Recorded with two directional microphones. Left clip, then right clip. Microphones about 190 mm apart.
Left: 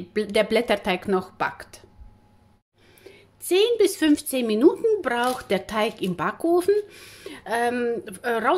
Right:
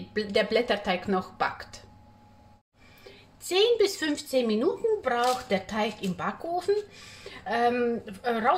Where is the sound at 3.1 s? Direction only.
30° left (ahead or behind).